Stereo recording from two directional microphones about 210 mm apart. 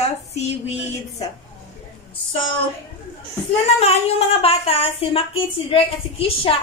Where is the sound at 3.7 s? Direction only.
30° left (ahead or behind).